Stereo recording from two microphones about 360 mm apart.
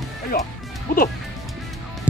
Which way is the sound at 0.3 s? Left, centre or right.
Left.